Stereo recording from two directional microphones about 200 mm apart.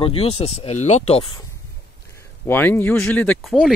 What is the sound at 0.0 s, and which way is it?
Speech, 30° left (ahead or behind).